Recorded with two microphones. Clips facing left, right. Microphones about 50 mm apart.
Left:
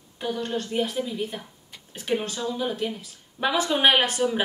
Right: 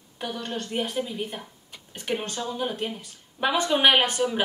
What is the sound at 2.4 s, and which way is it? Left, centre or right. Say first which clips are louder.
Speech: left 2 dB; right.